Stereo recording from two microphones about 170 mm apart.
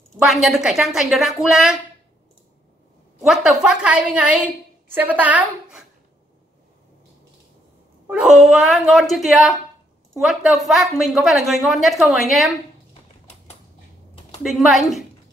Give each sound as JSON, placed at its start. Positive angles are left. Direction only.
{"t": 0.2, "sound": "a woman's voice", "side_deg": 0}
{"t": 3.3, "sound": "a woman's voice", "side_deg": -5}
{"t": 8.1, "sound": "a woman's voice", "side_deg": -5}
{"t": 14.4, "sound": "a woman's voice", "side_deg": 0}